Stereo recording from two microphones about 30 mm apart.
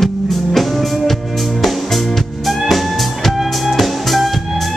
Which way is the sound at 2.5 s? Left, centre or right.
Centre.